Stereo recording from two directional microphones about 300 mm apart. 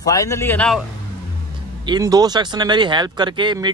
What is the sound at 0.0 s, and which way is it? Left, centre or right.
Speech, centre.